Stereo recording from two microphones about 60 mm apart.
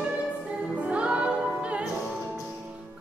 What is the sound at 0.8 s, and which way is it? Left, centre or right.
Music, centre.